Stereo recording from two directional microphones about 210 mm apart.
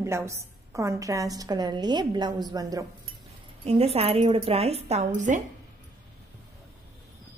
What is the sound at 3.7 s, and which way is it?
A woman's voice, 30° right (ahead or behind).